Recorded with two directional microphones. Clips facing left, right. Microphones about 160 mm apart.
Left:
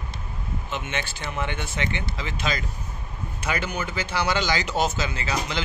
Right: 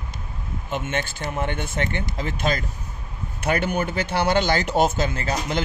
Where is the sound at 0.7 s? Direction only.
50° right (ahead or behind).